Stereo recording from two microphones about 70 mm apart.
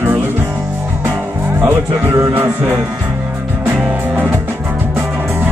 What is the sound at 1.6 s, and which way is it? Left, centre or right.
Speech, right.